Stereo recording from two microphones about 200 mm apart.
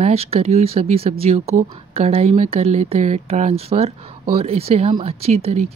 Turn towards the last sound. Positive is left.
turn(degrees=-30)  # may be behind; listen again after turning